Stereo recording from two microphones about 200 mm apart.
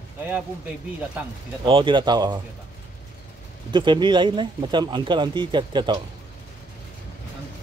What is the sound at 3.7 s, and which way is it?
Speech, 25° right (ahead or behind).